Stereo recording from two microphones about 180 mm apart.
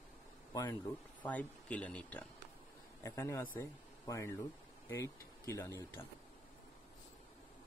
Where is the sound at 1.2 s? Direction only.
10° left (ahead or behind).